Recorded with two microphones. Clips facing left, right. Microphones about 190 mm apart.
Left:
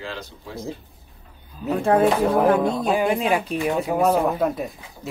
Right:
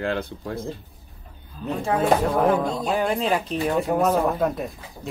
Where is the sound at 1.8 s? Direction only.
55° left (ahead or behind).